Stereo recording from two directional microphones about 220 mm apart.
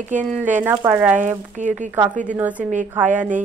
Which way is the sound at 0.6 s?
10° right (ahead or behind).